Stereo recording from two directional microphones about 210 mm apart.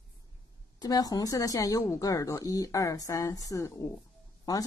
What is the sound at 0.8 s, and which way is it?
A woman's voice, 15° left (ahead or behind).